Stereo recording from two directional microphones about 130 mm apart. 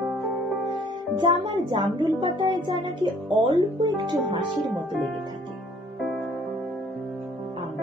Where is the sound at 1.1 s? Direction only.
35° right (ahead or behind).